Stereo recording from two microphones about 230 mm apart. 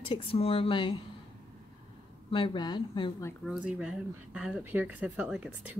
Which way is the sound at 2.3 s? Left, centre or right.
Left.